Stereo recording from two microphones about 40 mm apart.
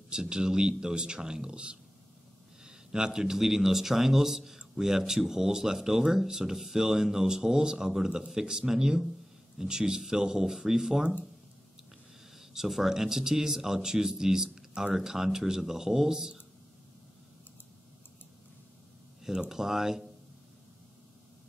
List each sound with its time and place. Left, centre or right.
0.1 s speech: centre
12.4 s speech: centre
19.5 s speech: centre